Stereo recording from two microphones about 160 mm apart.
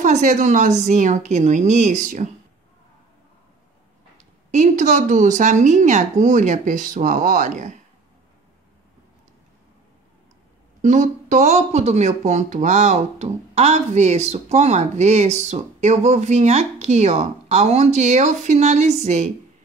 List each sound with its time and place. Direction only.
0.0 s speech: 50° right (ahead or behind)
4.2 s speech: 50° right (ahead or behind)
10.8 s speech: 50° right (ahead or behind)